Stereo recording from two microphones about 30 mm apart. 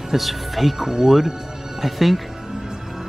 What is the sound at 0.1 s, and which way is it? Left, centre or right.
Speech, centre.